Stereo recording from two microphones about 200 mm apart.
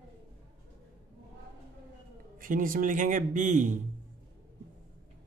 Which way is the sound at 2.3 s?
45° right (ahead or behind).